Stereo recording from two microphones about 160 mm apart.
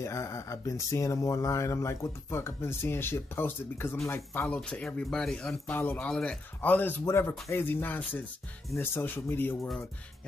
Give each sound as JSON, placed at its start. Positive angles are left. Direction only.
{"t": 0.0, "sound": "speech", "side_deg": 20}